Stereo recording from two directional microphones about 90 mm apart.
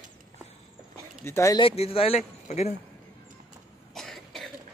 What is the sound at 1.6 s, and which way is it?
Speech, 90° left.